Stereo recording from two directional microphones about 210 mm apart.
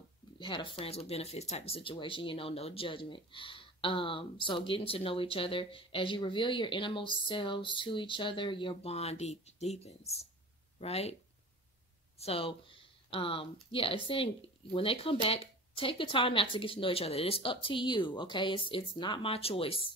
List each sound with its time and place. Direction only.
0.4 s speech: 25° left (ahead or behind)
12.2 s speech: 25° left (ahead or behind)